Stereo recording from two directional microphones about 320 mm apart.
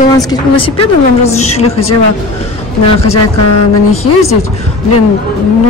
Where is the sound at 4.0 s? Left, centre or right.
Centre.